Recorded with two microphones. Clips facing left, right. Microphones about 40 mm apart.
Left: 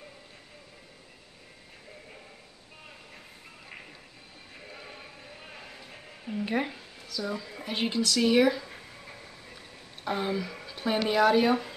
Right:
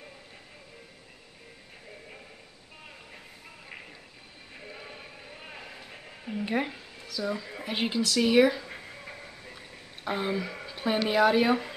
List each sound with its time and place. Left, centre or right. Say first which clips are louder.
4.6 s music: right 2 dB; centre
8.6 s a sound: right 3 dB; centre
10.0 s speech: even; centre